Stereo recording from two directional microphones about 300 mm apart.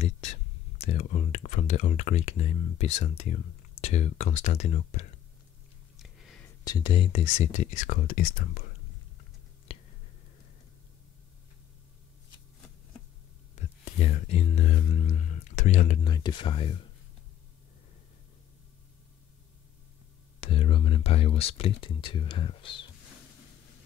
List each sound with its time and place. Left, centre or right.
0.0 s speech: left
5.9 s a sound: centre
6.6 s speech: centre
9.7 s a sound: centre
13.6 s speech: left
20.3 s speech: centre